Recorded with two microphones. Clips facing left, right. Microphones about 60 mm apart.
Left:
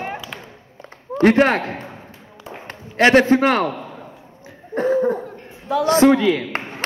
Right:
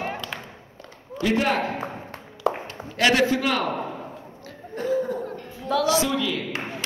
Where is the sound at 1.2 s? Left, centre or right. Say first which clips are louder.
Left 8 dB; left.